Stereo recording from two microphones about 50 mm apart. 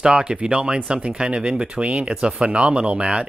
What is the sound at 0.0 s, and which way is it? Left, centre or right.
Speech, centre.